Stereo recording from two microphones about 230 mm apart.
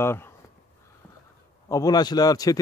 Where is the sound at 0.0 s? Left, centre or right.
Centre.